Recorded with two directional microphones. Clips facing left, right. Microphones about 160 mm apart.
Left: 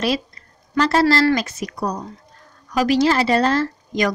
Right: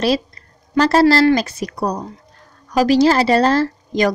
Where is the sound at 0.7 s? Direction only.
35° right (ahead or behind).